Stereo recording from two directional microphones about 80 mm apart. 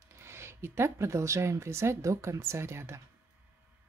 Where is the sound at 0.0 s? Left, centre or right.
Right.